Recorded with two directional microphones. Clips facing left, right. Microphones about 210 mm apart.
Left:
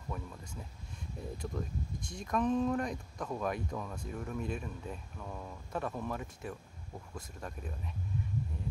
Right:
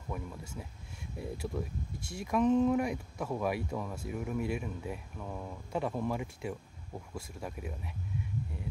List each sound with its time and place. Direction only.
0.1 s speech: 10° right (ahead or behind)